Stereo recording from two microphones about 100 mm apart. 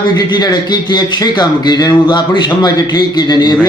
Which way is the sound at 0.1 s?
45° left (ahead or behind).